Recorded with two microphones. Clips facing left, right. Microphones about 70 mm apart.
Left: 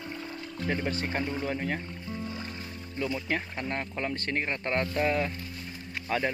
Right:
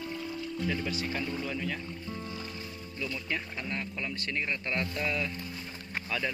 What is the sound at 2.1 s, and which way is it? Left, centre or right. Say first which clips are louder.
Music: left 6 dB; left.